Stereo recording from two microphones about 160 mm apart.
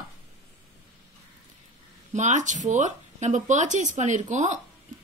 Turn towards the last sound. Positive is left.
turn(degrees=-50)  # may be behind; listen again after turning